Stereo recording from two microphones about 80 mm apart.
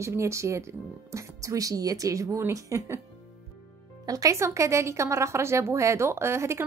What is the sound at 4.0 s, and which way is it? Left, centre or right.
Speech, right.